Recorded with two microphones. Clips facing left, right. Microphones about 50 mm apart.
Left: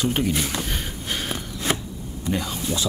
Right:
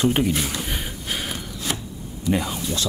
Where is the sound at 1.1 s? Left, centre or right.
Centre.